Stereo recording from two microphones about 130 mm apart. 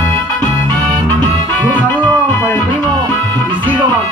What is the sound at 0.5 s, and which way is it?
Music, 15° left (ahead or behind).